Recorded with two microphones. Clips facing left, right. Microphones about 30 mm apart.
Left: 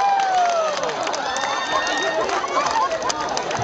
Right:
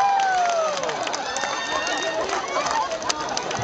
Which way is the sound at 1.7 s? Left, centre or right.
Centre.